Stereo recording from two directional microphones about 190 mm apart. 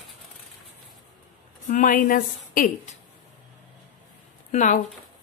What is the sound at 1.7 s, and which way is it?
A woman's voice, 45° left (ahead or behind).